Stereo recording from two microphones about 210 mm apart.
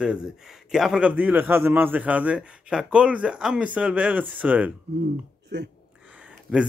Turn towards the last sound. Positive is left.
turn(degrees=-5)  # may be behind; listen again after turning